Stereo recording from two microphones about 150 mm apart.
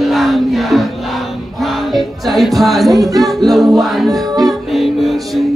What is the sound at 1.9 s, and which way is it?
Music, centre (ahead or behind).